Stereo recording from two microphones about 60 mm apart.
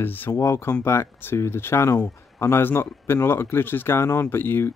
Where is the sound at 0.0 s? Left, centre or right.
Left.